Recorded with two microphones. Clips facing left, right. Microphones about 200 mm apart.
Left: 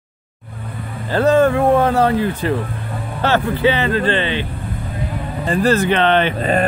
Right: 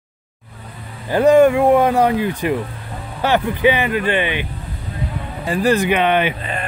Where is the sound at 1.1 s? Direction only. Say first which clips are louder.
Right 2 dB; 15° right (ahead or behind).